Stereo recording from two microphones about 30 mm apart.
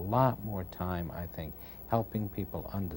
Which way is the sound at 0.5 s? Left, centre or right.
Centre.